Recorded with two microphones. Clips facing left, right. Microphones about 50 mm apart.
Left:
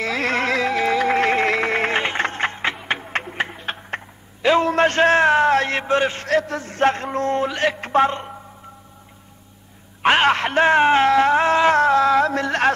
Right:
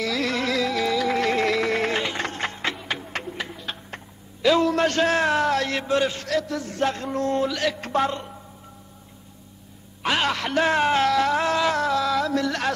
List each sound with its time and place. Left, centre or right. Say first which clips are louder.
0.0 s music: left 4 dB; left
10.0 s speech: left 7 dB; left